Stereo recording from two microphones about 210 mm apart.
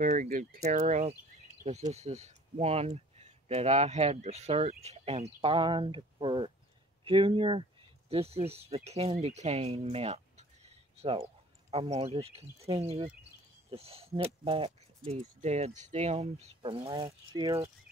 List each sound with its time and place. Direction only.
0.0 s speech: 35° right (ahead or behind); by 17.6 s 20° right (ahead or behind)